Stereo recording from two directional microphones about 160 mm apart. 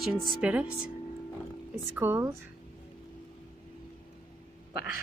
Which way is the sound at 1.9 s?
15° right (ahead or behind).